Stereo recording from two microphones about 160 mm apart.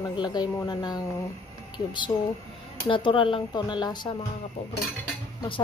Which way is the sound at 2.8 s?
30° left (ahead or behind).